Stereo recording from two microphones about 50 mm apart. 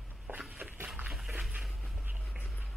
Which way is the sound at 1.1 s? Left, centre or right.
Centre.